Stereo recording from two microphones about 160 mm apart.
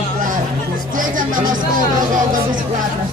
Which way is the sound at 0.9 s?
55° right (ahead or behind).